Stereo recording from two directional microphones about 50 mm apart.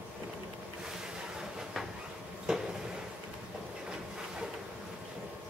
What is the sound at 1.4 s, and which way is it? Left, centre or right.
Train, centre.